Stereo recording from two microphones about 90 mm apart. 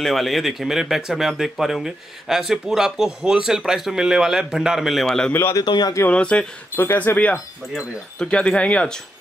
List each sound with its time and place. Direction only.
0.0 s speech: centre (ahead or behind)
5.3 s speech: 25° left (ahead or behind)
5.6 s speech: 50° left (ahead or behind)
6.0 s speech: 10° left (ahead or behind)
6.8 s speech: 25° left (ahead or behind)